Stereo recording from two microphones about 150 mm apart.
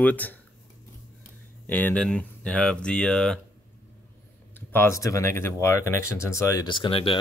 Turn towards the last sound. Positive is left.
turn(degrees=35)  # may be behind; listen again after turning